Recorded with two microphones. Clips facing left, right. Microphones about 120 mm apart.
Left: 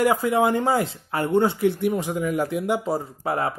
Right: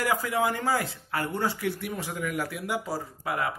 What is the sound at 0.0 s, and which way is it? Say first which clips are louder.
Speech: left 7 dB; 25° left (ahead or behind).